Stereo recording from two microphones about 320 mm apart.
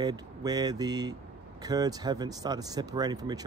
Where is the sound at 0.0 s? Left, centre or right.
Centre.